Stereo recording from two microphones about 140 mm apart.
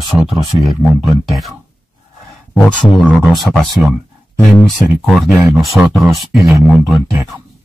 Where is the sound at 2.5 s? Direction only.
35° left (ahead or behind).